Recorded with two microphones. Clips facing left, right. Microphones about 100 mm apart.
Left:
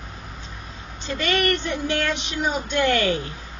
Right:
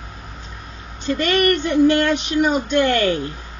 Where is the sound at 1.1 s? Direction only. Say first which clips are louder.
Right 5 dB; 45° right (ahead or behind).